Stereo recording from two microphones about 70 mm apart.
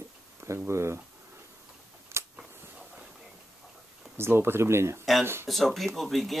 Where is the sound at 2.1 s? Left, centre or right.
Right.